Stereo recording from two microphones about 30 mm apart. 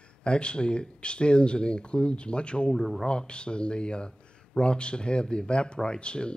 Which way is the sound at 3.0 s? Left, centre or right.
Left.